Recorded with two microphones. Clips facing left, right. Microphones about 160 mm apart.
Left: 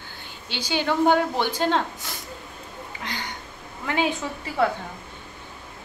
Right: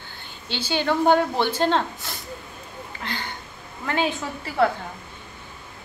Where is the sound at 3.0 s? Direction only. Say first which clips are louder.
Right 2 dB; 15° left (ahead or behind).